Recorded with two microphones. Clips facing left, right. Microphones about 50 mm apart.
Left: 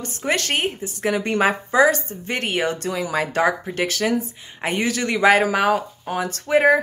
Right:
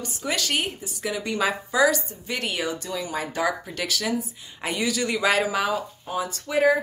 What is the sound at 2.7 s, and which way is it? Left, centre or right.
Speech, left.